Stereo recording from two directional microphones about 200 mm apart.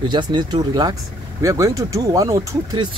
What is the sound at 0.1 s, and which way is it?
Speech, 20° right (ahead or behind).